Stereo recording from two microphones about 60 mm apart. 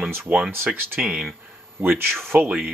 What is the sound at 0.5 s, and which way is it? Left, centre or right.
Speech, right.